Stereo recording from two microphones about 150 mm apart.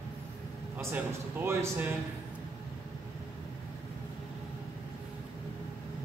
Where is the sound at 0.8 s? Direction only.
15° right (ahead or behind).